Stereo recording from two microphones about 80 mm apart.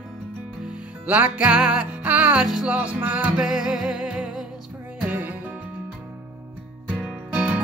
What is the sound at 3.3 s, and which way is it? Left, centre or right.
Music, centre.